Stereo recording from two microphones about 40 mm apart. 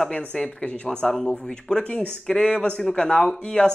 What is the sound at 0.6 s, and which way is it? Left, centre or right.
Speech, left.